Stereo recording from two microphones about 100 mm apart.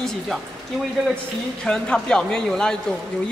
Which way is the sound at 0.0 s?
Centre (ahead or behind).